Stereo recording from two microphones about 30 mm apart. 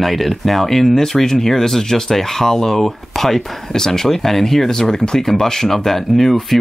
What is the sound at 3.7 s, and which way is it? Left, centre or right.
Speech, centre.